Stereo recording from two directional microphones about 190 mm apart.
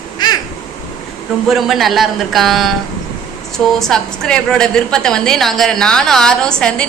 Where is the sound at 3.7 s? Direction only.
5° left (ahead or behind).